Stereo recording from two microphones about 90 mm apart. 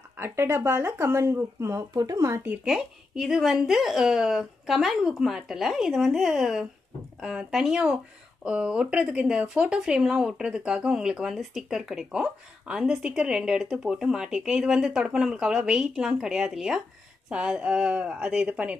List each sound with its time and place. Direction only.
0.2 s speech: 25° right (ahead or behind)
2.6 s speech: 5° right (ahead or behind)